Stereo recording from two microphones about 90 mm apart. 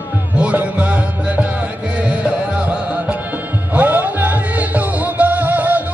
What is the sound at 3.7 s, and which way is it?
Music, 20° right (ahead or behind).